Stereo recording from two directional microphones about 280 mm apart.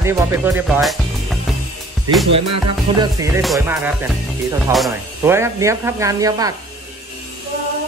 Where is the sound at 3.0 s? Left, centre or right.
Centre.